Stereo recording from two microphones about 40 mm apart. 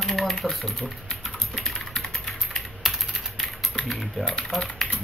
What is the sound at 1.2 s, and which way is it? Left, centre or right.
Typing, centre.